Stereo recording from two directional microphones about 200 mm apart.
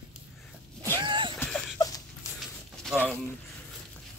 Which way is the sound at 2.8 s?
Centre (ahead or behind).